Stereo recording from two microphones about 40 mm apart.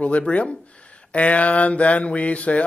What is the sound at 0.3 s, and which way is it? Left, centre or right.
Speech, left.